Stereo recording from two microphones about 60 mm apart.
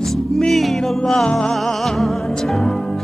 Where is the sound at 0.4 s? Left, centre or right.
Centre.